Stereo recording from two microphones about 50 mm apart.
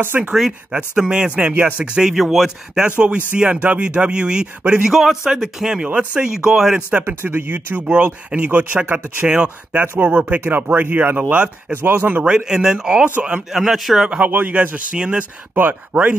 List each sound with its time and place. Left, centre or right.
0.1 s speech: right
4.9 s a man's voice: centre
5.6 s speech: centre
7.2 s speech: right
12.2 s speech: right
14.2 s speech: right
15.5 s speech: right